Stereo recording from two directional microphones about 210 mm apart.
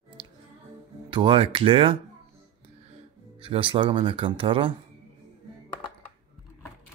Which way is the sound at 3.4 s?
25° right (ahead or behind).